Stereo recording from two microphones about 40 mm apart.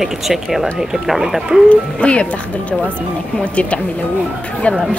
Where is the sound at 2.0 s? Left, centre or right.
Left.